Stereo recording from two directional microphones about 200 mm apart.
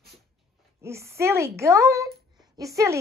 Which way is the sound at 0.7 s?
15° right (ahead or behind).